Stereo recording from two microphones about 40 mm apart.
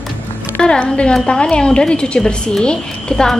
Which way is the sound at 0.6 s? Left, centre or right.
Centre.